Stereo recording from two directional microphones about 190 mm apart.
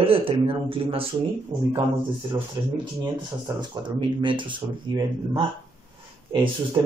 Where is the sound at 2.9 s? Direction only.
20° right (ahead or behind).